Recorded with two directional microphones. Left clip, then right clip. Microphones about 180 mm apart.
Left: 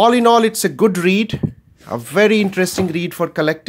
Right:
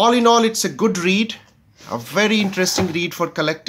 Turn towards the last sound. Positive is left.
turn(degrees=45)  # may be behind; listen again after turning